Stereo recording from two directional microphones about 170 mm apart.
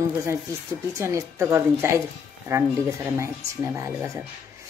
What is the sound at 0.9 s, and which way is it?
Speech, 15° right (ahead or behind).